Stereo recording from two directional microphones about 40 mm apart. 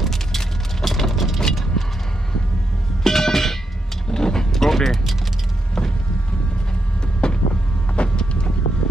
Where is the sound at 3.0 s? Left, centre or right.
Centre.